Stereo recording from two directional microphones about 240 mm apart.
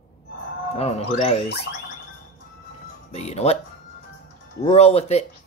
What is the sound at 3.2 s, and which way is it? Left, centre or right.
Speech, left.